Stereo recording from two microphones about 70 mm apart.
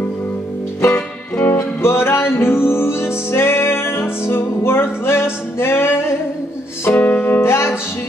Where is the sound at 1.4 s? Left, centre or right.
Left.